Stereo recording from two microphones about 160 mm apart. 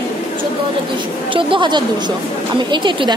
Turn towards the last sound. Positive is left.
turn(degrees=-30)  # may be behind; listen again after turning